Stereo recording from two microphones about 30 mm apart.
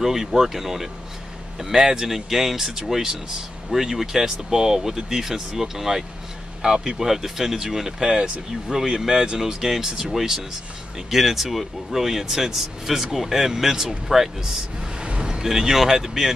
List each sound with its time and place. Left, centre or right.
0.0 s speech: centre
7.1 s speech: centre